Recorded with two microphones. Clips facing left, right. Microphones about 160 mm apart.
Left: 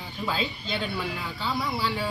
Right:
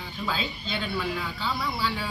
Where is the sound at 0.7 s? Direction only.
20° left (ahead or behind).